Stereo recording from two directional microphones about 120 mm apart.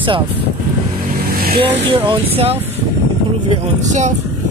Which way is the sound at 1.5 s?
50° right (ahead or behind).